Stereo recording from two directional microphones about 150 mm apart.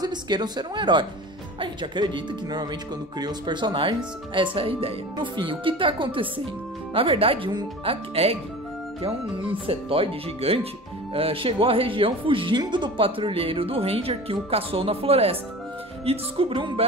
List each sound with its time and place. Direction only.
0.0 s a woman's voice: 30° right (ahead or behind)
9.7 s speech: 40° right (ahead or behind)